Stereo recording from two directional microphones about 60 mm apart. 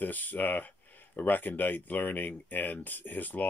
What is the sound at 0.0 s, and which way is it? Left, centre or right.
Speech, left.